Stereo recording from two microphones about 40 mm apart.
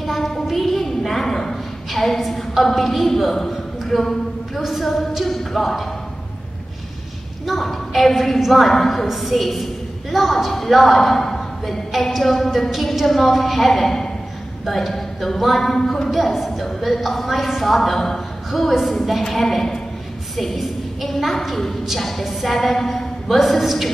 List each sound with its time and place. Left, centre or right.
0.0 s a sound: centre
4.6 s a woman's voice: centre
7.4 s a woman's voice: centre
8.6 s a man's voice: centre
9.0 s a woman's voice: centre